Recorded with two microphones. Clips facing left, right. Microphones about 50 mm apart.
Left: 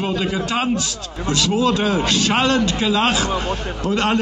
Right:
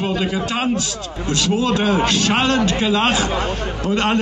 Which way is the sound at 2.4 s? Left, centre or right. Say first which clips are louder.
Even; centre.